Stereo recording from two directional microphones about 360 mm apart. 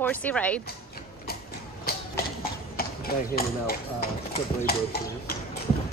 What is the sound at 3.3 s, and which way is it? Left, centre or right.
Speech, left.